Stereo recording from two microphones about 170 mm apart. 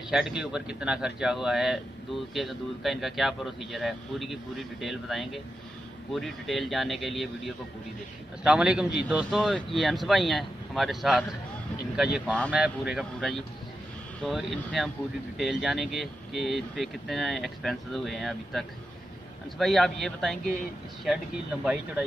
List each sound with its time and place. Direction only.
0.1 s speech: 5° right (ahead or behind)
12.3 s speech: 5° left (ahead or behind)
12.5 s speech: 5° right (ahead or behind)